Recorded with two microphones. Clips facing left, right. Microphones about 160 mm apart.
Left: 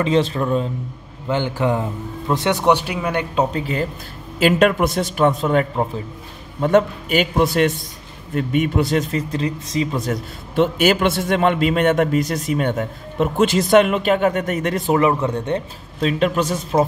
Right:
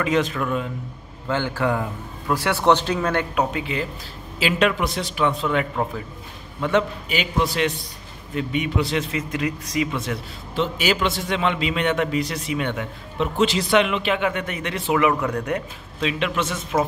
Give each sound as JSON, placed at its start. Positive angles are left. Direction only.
{"t": 0.0, "sound": "speech", "side_deg": 30}
{"t": 1.2, "sound": "a man's voice", "side_deg": 20}
{"t": 3.3, "sound": "a man's voice", "side_deg": 40}
{"t": 10.5, "sound": "a man's voice", "side_deg": 55}
{"t": 16.0, "sound": "speech", "side_deg": 40}